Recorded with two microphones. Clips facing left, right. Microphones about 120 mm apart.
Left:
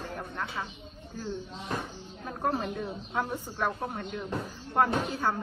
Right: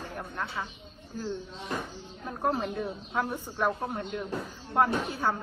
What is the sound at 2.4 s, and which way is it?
Speech, 5° right (ahead or behind).